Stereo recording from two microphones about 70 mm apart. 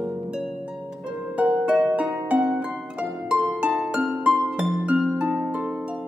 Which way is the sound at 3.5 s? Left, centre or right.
Centre.